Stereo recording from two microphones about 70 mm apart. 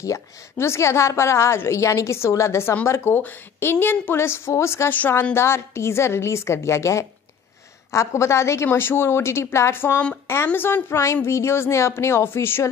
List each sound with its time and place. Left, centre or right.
0.0 s a woman's voice: left
3.2 s a woman's voice: left
8.6 s a woman's voice: left